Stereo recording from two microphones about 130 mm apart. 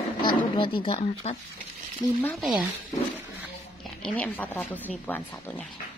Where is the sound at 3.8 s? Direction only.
10° left (ahead or behind).